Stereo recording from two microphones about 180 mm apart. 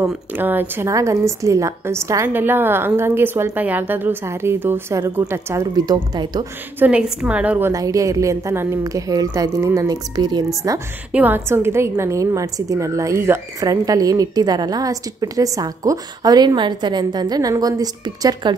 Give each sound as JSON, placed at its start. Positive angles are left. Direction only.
{"t": 0.0, "sound": "a woman's voice", "side_deg": -5}
{"t": 6.8, "sound": "a woman's voice", "side_deg": -5}
{"t": 11.1, "sound": "a woman's voice", "side_deg": -10}